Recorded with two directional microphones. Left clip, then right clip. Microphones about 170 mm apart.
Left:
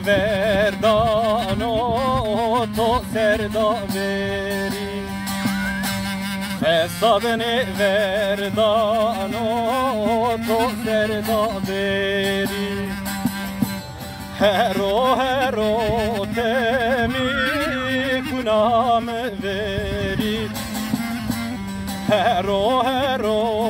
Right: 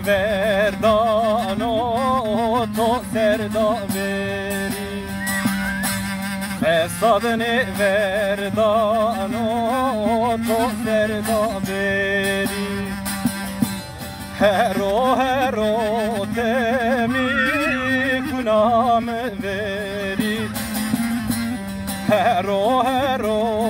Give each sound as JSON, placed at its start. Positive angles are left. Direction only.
{"t": 0.1, "sound": "music", "side_deg": 0}
{"t": 6.6, "sound": "music", "side_deg": 0}
{"t": 14.4, "sound": "music", "side_deg": -5}
{"t": 22.0, "sound": "music", "side_deg": -5}